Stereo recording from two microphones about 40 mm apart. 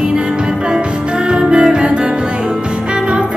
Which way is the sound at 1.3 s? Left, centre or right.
Right.